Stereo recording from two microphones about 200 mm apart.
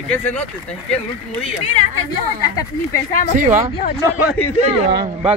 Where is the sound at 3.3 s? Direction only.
40° right (ahead or behind).